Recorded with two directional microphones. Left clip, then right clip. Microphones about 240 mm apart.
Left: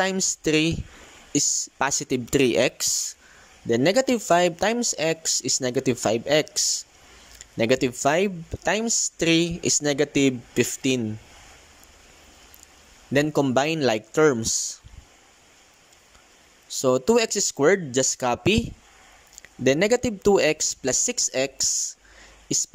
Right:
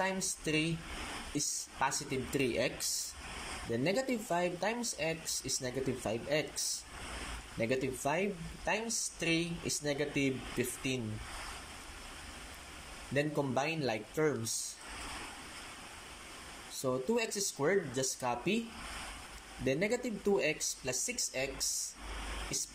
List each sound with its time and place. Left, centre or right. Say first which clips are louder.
0.0 s speech: left 11 dB; left
13.1 s speech: left 12 dB; left
16.8 s speech: left 14 dB; left
19.6 s speech: left 13 dB; left